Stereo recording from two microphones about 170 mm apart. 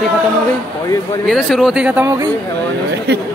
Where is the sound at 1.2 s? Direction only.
Centre (ahead or behind); by 2.3 s 15° right (ahead or behind).